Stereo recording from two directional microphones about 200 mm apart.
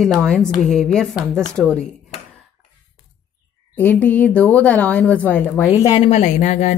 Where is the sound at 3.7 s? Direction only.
10° left (ahead or behind).